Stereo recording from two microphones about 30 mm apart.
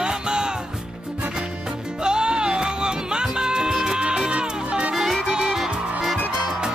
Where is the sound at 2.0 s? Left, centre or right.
Right.